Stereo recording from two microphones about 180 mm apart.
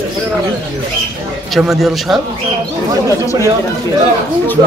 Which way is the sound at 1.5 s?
Centre (ahead or behind).